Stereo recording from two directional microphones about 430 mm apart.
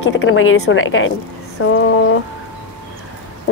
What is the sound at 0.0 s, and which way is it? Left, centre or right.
Speech, left.